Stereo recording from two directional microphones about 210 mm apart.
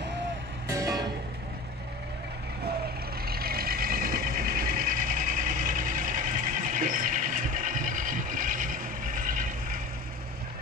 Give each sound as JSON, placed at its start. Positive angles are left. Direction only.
{"t": 0.7, "sound": "music", "side_deg": -15}
{"t": 3.3, "sound": "vehicle", "side_deg": -45}